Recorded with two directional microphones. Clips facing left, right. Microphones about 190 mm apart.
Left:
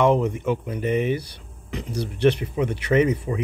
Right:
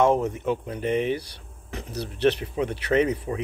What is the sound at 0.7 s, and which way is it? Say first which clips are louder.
Speech: left 2 dB; 10° left (ahead or behind).